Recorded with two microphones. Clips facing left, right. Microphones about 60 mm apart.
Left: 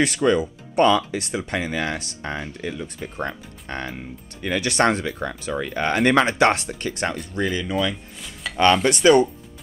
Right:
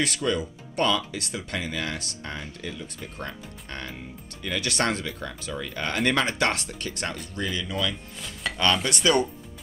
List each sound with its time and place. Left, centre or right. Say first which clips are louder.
0.0 s speech: left 7 dB; left
8.5 s speech: left 2 dB; centre
8.8 s speech: left 8 dB; left